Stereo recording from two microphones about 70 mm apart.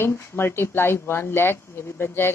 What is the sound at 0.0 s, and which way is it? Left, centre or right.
A woman's voice, left.